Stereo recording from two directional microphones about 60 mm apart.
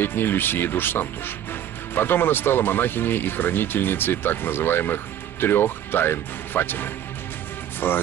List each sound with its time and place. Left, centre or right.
0.0 s speech: left